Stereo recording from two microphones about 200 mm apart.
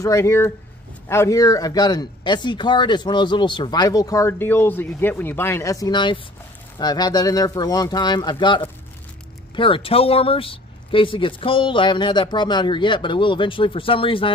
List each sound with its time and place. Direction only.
0.0 s speech: 15° left (ahead or behind)